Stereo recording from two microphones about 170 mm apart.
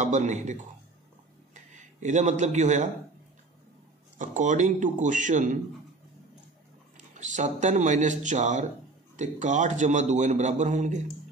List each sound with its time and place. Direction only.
0.0 s a man's voice: 45° right (ahead or behind)
4.2 s a man's voice: 45° right (ahead or behind)
7.2 s a man's voice: 45° right (ahead or behind)